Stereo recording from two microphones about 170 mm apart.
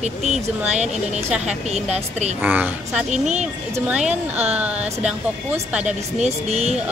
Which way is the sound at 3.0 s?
40° right (ahead or behind).